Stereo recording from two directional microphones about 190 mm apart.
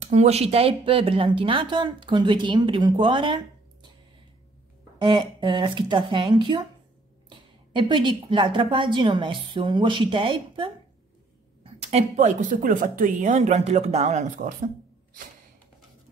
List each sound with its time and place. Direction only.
0.0 s a woman's voice: 35° right (ahead or behind)
4.9 s a woman's voice: 25° right (ahead or behind); by 14.7 s 40° right (ahead or behind)